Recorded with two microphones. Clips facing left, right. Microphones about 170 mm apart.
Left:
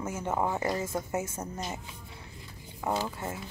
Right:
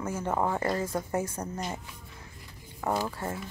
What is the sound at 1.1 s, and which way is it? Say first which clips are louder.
Speech: right 3 dB; 25° left (ahead or behind).